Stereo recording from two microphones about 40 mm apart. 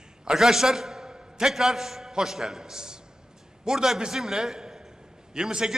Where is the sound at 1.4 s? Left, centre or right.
Centre.